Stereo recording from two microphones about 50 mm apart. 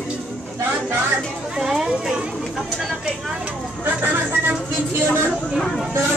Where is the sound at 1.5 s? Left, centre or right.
Centre.